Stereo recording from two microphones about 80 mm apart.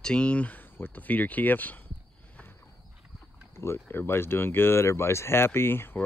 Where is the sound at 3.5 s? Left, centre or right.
Left.